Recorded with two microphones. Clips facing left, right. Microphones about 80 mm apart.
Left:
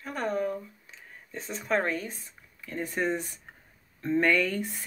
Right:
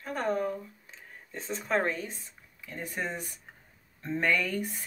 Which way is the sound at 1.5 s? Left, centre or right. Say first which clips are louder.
Left 1 dB; right.